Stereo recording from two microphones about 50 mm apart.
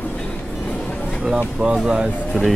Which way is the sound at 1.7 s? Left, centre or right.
Centre.